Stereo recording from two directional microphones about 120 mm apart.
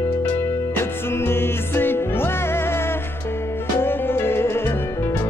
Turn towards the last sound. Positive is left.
turn(degrees=20)  # may be behind; listen again after turning